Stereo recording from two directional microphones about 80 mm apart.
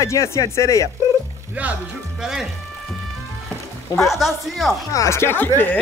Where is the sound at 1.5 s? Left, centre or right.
Centre.